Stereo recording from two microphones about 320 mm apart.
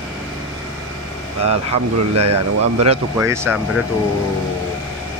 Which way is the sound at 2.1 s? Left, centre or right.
Right.